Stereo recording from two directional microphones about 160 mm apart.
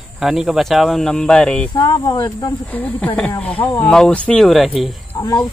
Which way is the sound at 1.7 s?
30° left (ahead or behind).